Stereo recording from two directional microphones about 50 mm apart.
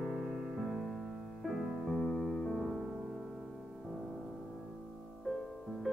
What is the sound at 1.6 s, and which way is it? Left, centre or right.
Music, centre.